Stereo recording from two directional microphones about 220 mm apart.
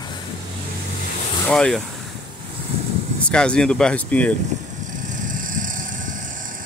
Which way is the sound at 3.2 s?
5° left (ahead or behind).